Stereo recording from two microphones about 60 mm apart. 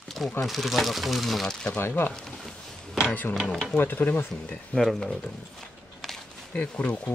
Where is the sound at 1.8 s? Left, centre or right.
Left.